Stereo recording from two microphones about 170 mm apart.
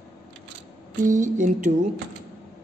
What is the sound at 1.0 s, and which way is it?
Speech, 50° right (ahead or behind).